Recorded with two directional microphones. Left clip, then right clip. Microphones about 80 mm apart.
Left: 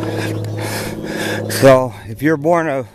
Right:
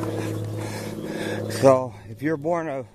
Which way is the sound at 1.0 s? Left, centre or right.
Left.